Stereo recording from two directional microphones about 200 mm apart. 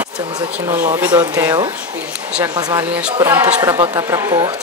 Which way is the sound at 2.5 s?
20° right (ahead or behind).